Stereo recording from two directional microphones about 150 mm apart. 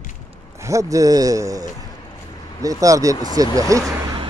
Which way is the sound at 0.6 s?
20° right (ahead or behind).